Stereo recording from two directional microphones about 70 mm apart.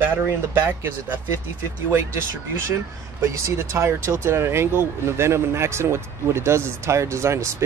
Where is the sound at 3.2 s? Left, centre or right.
Right.